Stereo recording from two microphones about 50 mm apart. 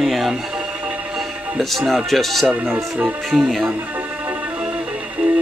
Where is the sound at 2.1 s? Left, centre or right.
Centre.